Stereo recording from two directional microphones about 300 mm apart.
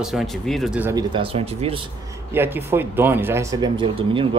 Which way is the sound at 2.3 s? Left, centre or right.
Centre.